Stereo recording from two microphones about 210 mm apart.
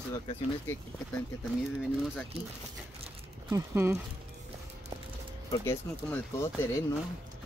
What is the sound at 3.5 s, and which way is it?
Speech, 10° right (ahead or behind).